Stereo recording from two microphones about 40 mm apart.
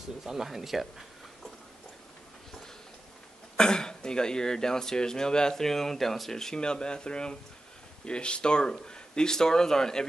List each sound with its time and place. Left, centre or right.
0.2 s speech: centre
3.5 s speech: centre